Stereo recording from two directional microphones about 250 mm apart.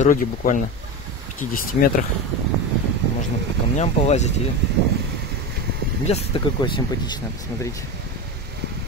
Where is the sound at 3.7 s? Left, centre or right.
Left.